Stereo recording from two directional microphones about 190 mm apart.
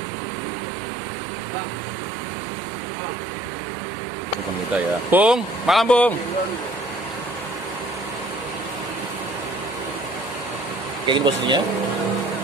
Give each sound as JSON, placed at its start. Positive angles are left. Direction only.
{"t": 4.7, "sound": "speech", "side_deg": -5}
{"t": 11.1, "sound": "speech", "side_deg": -25}